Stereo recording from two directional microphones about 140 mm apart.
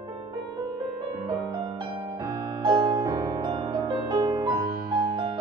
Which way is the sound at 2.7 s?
25° right (ahead or behind).